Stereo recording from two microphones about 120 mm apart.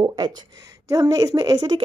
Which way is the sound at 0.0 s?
35° right (ahead or behind).